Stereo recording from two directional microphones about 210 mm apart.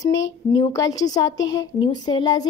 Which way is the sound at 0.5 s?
20° left (ahead or behind).